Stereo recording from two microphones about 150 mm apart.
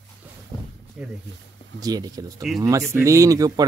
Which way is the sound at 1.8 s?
25° right (ahead or behind).